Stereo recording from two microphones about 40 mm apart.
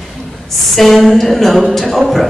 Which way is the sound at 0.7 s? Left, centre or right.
Centre.